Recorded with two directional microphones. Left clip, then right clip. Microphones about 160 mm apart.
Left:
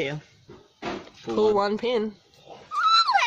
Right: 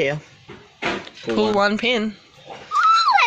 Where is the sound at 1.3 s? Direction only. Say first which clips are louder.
Right 3 dB; 15° left (ahead or behind).